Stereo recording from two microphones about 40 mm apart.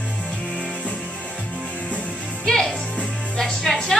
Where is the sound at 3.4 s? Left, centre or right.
Centre.